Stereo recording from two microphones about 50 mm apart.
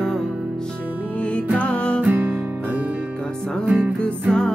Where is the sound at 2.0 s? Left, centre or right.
Right.